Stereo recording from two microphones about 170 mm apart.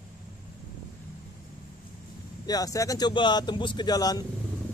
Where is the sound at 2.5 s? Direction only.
20° left (ahead or behind).